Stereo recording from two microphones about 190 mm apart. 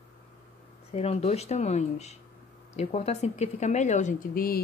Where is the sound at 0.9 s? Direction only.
35° left (ahead or behind).